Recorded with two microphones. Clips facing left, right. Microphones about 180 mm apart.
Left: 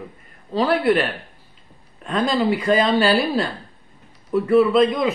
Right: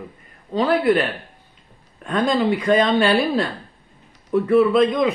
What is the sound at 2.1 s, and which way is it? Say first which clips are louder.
Speech: right 1 dB; centre (ahead or behind).